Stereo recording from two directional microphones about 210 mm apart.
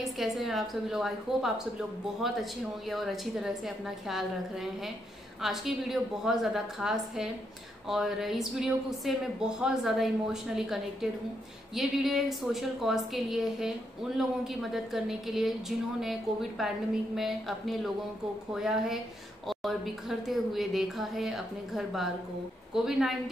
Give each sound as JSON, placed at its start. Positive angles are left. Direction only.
{"t": 0.0, "sound": "a woman's voice", "side_deg": 0}